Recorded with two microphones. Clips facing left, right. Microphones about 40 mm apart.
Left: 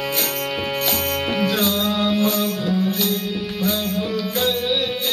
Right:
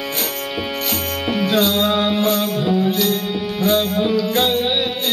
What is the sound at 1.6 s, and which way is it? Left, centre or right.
Music, right.